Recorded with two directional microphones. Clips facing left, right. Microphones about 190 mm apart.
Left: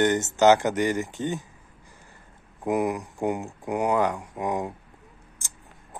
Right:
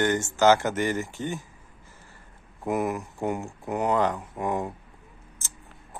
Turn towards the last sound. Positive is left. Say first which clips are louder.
# even
turn(degrees=15)  # may be behind; listen again after turning